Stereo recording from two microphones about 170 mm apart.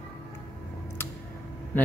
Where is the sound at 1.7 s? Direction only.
10° left (ahead or behind).